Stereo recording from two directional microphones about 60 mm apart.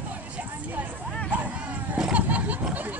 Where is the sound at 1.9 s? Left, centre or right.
Right.